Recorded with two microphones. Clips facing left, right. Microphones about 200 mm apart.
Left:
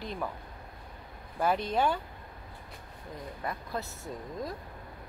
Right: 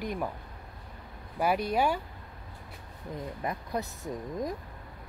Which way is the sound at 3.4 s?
15° right (ahead or behind).